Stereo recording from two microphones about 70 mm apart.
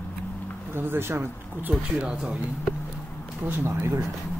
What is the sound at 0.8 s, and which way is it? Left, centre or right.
Speech, right.